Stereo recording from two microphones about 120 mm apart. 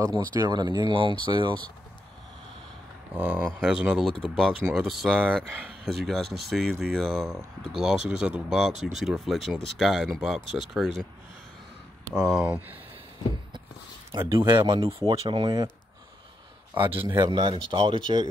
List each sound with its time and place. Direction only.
0.1 s speech: 35° right (ahead or behind)
3.2 s speech: 10° right (ahead or behind)
8.7 s speech: 75° right (ahead or behind)
9.0 s speech: centre (ahead or behind)
12.3 s speech: 5° right (ahead or behind)
14.3 s speech: 40° right (ahead or behind)
16.7 s speech: 40° right (ahead or behind)